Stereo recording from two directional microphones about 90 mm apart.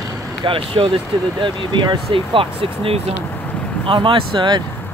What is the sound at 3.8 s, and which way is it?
Speech, 70° right (ahead or behind).